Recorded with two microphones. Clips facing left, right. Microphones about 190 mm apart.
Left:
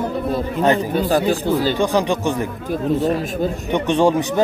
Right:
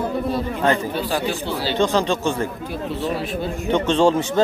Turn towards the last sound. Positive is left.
turn(degrees=15)  # may be behind; listen again after turning